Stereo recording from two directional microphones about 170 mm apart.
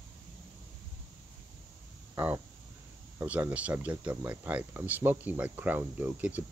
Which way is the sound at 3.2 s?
10° right (ahead or behind).